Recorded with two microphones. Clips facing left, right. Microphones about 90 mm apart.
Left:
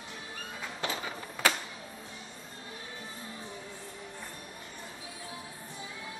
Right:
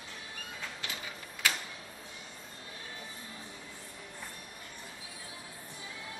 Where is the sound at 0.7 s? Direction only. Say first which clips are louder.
Left 7 dB; 35° left (ahead or behind).